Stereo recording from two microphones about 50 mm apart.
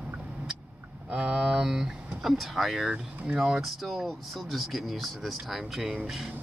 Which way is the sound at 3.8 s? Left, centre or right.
Centre.